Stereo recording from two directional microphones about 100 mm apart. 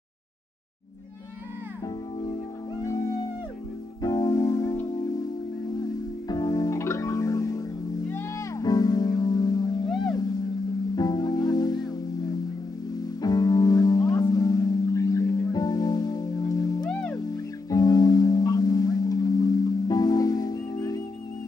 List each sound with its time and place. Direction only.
4.0 s keyboard: 35° left (ahead or behind)
5.8 s music: 40° left (ahead or behind)
13.2 s music: 40° left (ahead or behind)
16.8 s music: 10° left (ahead or behind)
17.6 s music: 40° left (ahead or behind)